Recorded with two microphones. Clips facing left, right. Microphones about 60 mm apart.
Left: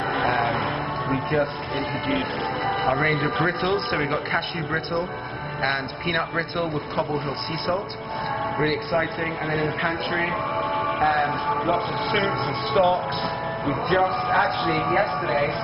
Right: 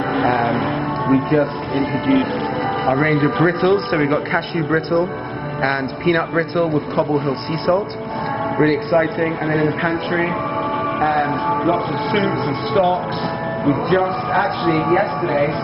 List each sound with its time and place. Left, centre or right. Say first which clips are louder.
0.4 s speech: right 5 dB; centre
4.1 s speech: right 6 dB; right
6.1 s speech: right 3 dB; centre
8.9 s a man's voice: right 8 dB; right
12.1 s speech: right 5 dB; centre